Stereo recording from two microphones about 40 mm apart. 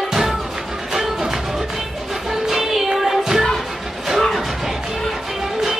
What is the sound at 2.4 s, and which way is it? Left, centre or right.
Music, centre.